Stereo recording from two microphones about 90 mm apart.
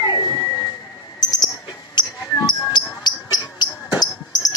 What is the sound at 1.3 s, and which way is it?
Music, 50° left (ahead or behind).